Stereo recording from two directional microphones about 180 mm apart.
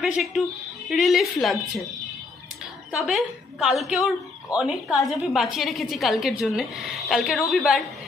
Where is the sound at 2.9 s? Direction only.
Centre (ahead or behind).